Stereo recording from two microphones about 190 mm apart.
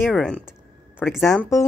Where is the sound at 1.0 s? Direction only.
10° left (ahead or behind).